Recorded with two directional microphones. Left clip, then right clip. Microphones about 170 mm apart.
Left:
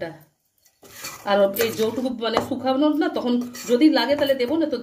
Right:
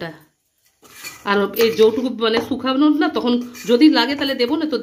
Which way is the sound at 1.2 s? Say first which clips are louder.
Right 2 dB; 60° right (ahead or behind).